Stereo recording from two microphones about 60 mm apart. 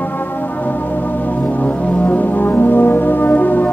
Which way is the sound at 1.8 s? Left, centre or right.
Left.